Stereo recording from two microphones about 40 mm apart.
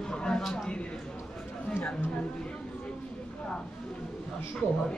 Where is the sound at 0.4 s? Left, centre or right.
Centre.